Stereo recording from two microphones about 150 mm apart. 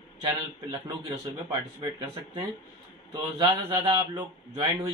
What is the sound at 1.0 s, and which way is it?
Speech, 25° right (ahead or behind).